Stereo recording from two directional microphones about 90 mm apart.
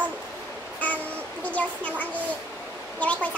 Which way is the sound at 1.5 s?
15° left (ahead or behind).